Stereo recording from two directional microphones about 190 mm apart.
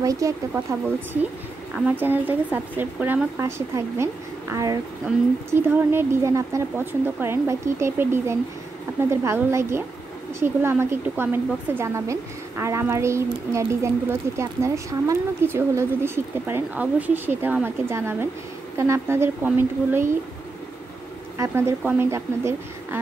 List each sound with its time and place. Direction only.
0.0 s speech: 15° right (ahead or behind)
1.9 s speech: 10° right (ahead or behind)
21.4 s speech: 15° right (ahead or behind)